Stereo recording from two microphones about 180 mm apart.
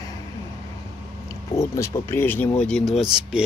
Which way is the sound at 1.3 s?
15° left (ahead or behind).